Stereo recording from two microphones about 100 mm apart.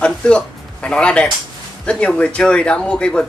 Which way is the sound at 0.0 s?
10° left (ahead or behind).